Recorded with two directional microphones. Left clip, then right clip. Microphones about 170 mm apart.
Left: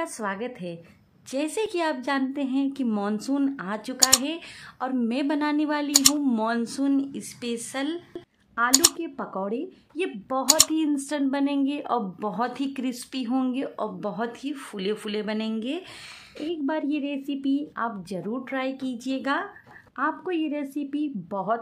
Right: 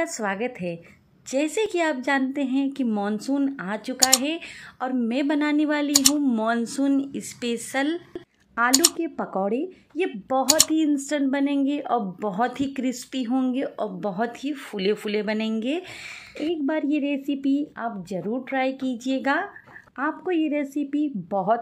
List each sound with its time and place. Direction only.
0.0 s a woman's voice: 10° right (ahead or behind)
8.7 s speech: centre (ahead or behind)
9.0 s a woman's voice: 20° right (ahead or behind)
17.7 s a woman's voice: 5° right (ahead or behind)
20.0 s a woman's voice: 10° right (ahead or behind)